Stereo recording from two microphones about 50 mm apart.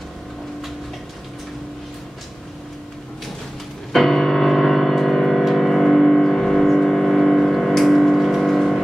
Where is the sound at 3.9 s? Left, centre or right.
Centre.